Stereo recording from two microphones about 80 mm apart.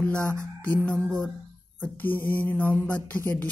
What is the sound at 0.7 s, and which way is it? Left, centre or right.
Mantra, centre.